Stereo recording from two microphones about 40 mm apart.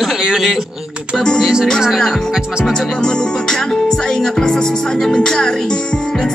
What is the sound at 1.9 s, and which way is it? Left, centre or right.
Speech, centre.